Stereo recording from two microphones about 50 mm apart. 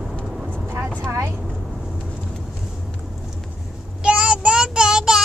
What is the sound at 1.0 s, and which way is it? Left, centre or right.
Vehicle, right.